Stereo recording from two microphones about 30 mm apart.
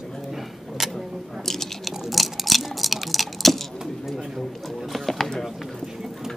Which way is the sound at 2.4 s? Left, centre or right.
Centre.